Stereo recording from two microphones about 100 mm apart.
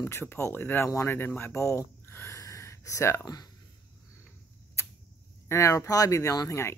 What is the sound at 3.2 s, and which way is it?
Speech, 40° left (ahead or behind).